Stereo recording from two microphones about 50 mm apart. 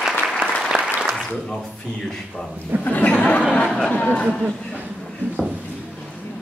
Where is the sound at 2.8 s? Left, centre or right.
Left.